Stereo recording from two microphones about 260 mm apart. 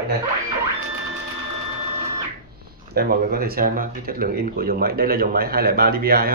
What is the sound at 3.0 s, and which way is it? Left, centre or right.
Speech, right.